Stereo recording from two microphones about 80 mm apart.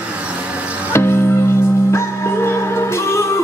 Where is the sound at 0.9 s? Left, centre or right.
Left.